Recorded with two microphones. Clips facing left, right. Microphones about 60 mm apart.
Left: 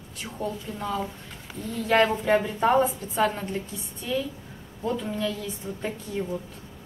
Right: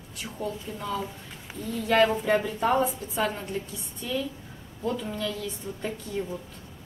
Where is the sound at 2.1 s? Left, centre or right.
Centre.